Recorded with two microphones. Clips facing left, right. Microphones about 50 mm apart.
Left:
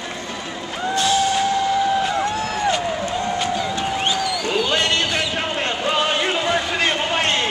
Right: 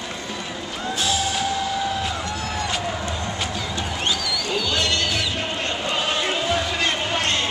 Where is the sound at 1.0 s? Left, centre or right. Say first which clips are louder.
Left 6 dB; centre.